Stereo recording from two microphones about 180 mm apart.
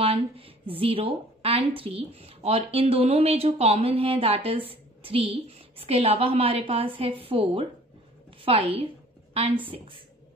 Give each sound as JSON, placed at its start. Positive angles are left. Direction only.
{"t": 0.0, "sound": "a woman's voice", "side_deg": -30}